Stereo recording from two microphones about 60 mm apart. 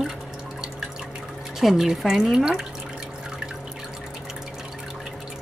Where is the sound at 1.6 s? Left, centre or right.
Centre.